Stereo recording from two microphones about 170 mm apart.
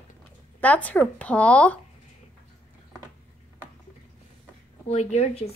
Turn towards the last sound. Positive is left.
turn(degrees=40)  # may be behind; listen again after turning